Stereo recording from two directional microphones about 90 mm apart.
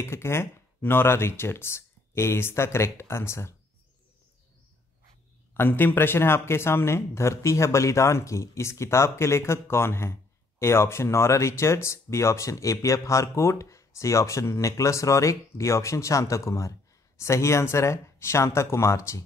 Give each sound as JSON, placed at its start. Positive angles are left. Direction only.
{"t": 0.0, "sound": "speech", "side_deg": 30}
{"t": 5.5, "sound": "speech", "side_deg": 25}